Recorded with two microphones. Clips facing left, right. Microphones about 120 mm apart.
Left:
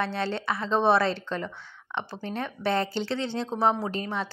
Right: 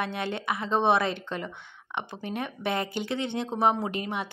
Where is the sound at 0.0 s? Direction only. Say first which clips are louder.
Left 2 dB; 15° right (ahead or behind).